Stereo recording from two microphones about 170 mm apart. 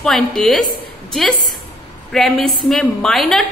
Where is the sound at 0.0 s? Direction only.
5° left (ahead or behind).